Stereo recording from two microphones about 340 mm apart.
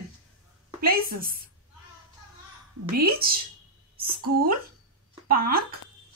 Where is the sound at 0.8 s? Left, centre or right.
Right.